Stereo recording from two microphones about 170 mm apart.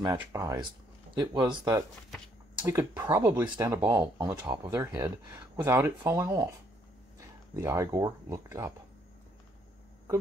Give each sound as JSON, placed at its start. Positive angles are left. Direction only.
{"t": 0.0, "sound": "speech", "side_deg": -20}